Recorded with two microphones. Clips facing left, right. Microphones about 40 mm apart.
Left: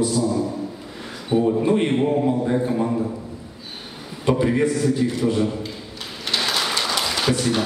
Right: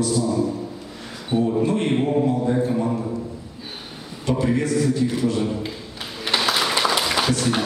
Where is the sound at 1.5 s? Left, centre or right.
Centre.